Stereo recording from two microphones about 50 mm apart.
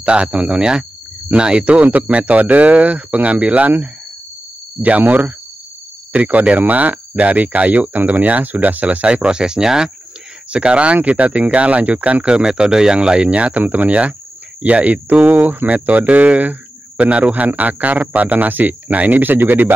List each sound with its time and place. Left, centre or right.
0.0 s speech: centre
4.8 s speech: right